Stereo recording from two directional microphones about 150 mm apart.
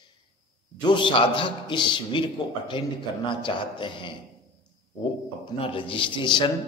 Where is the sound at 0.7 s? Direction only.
30° left (ahead or behind).